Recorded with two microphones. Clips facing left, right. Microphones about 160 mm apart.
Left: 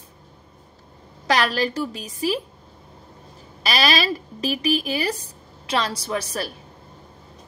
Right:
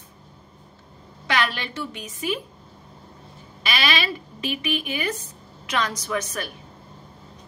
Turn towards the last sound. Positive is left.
turn(degrees=30)  # may be behind; listen again after turning